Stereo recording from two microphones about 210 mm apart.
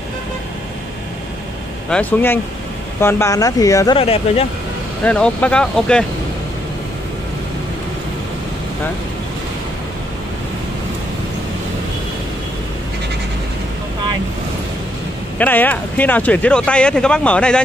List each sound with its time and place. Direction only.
1.9 s speech: 5° left (ahead or behind)
4.0 s speech: 30° left (ahead or behind)
5.0 s speech: 5° left (ahead or behind)
15.3 s speech: 10° left (ahead or behind)